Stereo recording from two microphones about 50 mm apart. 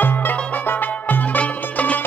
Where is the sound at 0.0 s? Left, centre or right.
Left.